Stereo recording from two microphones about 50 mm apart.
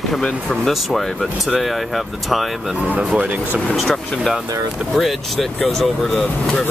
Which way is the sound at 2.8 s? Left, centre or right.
Right.